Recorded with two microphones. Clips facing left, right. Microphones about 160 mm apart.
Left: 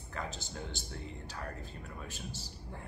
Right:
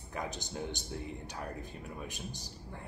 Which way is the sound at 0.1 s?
15° right (ahead or behind).